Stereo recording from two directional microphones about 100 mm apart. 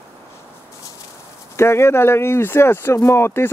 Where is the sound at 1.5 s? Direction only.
25° left (ahead or behind).